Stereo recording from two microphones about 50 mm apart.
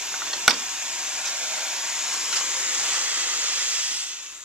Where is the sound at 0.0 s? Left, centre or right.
Centre.